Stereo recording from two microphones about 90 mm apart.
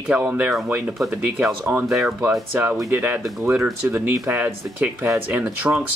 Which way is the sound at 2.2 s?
25° right (ahead or behind).